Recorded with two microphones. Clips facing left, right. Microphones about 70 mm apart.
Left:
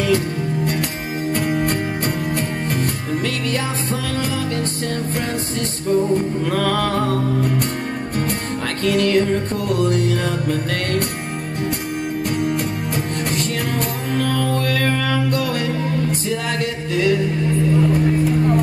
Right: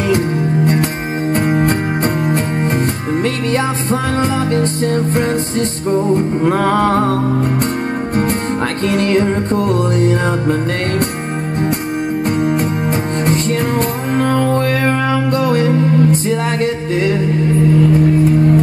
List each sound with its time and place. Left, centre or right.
1.3 s music: right
8.8 s music: right
12.3 s music: right